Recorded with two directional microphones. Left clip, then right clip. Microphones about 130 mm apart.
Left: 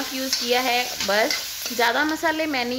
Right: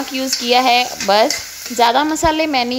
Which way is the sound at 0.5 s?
50° right (ahead or behind).